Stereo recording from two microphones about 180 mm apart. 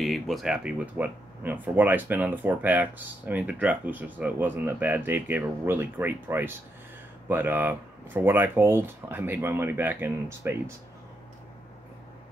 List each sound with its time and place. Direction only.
0.0 s speech: centre (ahead or behind)